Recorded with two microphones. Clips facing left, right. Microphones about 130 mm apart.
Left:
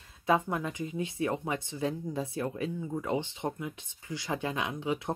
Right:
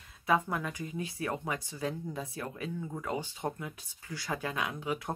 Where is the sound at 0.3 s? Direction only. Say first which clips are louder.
Left 2 dB; 25° left (ahead or behind).